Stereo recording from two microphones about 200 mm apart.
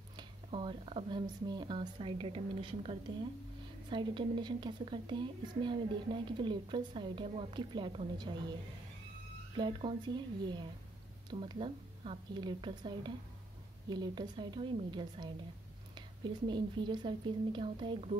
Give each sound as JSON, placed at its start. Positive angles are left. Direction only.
{"t": 0.2, "sound": "a woman's voice", "side_deg": -25}
{"t": 9.6, "sound": "a woman's voice", "side_deg": -25}